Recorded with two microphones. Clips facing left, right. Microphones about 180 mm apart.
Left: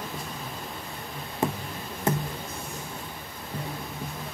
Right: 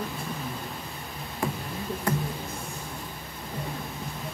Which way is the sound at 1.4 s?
20° left (ahead or behind).